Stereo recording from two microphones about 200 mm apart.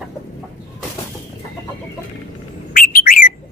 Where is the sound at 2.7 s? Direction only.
45° left (ahead or behind).